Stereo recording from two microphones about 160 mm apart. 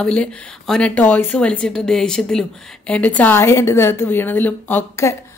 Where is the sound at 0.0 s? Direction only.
5° left (ahead or behind).